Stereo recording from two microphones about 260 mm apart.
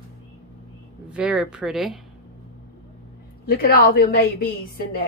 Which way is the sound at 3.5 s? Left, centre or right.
Left.